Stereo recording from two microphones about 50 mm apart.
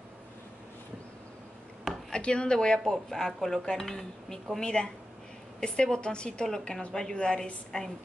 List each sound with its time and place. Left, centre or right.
2.0 s speech: centre
2.8 s a woman's voice: centre